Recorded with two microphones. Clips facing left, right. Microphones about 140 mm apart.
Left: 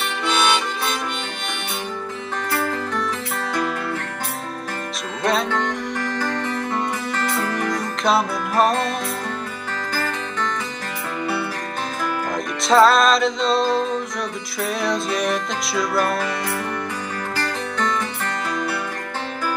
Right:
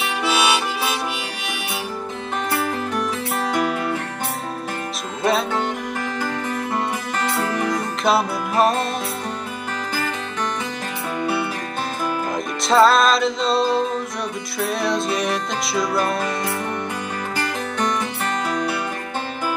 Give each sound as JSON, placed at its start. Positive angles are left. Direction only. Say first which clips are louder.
{"t": 0.0, "sound": "harmonica", "louder": "right 1 dB", "side_deg": -5}
{"t": 2.5, "sound": "music", "louder": "even", "side_deg": -15}
{"t": 5.2, "sound": "music", "louder": "right 1 dB", "side_deg": -5}
{"t": 7.2, "sound": "music", "louder": "right 2 dB", "side_deg": -20}
{"t": 8.0, "sound": "music", "louder": "even", "side_deg": 0}
{"t": 9.9, "sound": "music", "louder": "left 2 dB", "side_deg": -15}
{"t": 12.6, "sound": "music", "louder": "even", "side_deg": 0}
{"t": 17.4, "sound": "music", "louder": "right 1 dB", "side_deg": -15}